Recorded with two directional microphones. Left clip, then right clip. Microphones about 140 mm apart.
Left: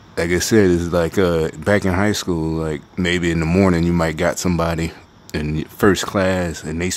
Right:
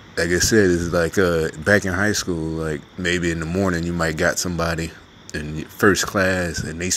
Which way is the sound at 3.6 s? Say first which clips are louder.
Left 3 dB; 15° left (ahead or behind).